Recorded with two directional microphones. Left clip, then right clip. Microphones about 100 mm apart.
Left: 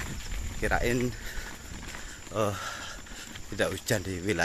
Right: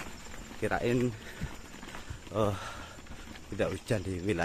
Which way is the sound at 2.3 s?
30° right (ahead or behind).